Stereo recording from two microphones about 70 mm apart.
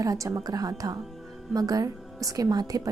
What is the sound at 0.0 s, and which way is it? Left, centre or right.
A woman's voice, right.